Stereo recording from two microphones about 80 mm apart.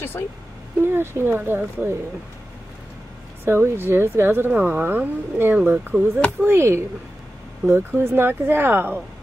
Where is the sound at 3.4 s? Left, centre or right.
Right.